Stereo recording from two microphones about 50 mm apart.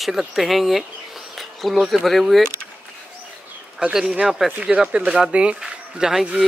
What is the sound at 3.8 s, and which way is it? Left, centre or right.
Speech, centre.